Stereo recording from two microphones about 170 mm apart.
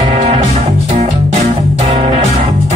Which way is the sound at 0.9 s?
45° right (ahead or behind).